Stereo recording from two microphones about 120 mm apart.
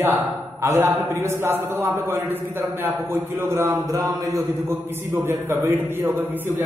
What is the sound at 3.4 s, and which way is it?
A man's voice, 25° right (ahead or behind).